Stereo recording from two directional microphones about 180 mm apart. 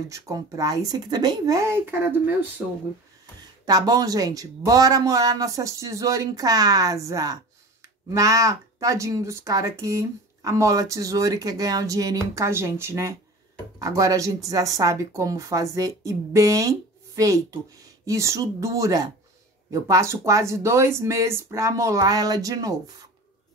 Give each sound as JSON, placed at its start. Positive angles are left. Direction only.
{"t": 0.1, "sound": "a man's voice", "side_deg": -20}
{"t": 3.6, "sound": "a man's voice", "side_deg": -20}